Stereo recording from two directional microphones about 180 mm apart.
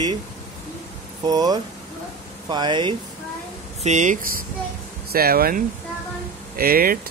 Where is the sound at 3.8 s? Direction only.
40° right (ahead or behind).